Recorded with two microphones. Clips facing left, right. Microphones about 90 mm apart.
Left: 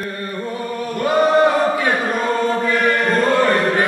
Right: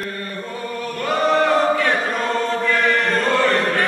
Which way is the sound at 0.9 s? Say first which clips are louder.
Left 5 dB; 15° left (ahead or behind).